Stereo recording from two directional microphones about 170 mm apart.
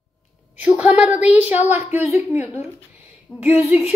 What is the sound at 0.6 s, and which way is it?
A woman's voice, 10° right (ahead or behind).